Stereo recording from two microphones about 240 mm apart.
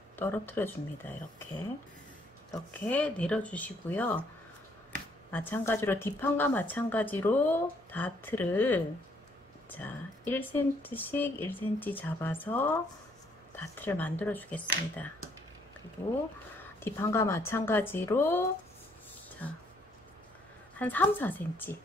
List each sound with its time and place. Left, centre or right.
0.1 s speech: centre
2.5 s speech: centre
5.3 s speech: centre
13.7 s speech: centre
16.5 s speech: centre
20.8 s speech: centre